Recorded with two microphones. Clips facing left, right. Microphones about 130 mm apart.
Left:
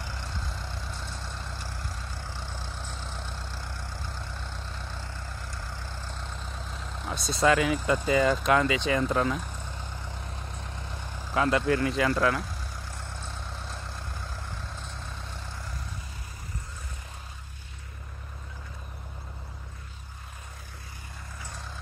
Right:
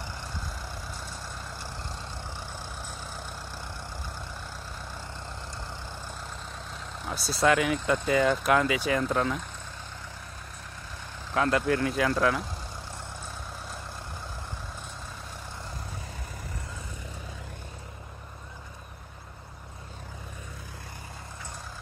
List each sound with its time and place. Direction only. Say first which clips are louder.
0.0 s vehicle: even; 10° right (ahead or behind)
1.7 s vehicle: right 1 dB; 20° right (ahead or behind)
5.6 s vehicle: right 1 dB; 20° right (ahead or behind)
6.5 s speech: left 1 dB; centre (ahead or behind)
11.3 s speech: even; centre (ahead or behind)